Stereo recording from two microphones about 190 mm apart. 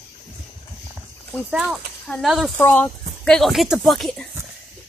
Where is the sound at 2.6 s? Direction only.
10° left (ahead or behind).